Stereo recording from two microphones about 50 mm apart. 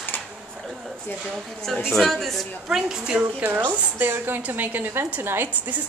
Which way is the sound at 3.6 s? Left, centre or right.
Right.